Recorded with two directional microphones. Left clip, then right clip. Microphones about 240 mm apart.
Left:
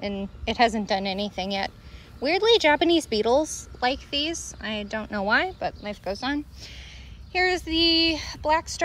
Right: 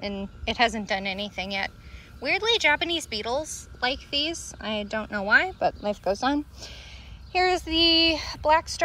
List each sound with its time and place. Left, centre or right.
0.0 s a woman's voice: centre